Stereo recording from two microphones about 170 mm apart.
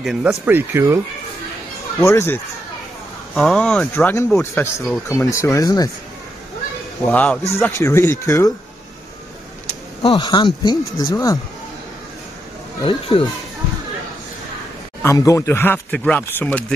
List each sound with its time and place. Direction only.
0.0 s speech: centre (ahead or behind)
2.0 s speech: 15° left (ahead or behind)
7.1 s speech: 10° left (ahead or behind)
10.0 s speech: 25° left (ahead or behind)
12.8 s speech: 30° left (ahead or behind)
15.0 s speech: 15° left (ahead or behind)